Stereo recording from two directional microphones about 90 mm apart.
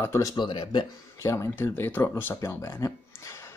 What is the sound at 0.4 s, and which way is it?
Speech, 60° left (ahead or behind).